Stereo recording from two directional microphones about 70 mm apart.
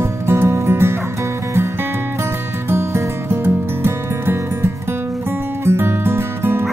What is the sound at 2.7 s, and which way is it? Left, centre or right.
Music, right.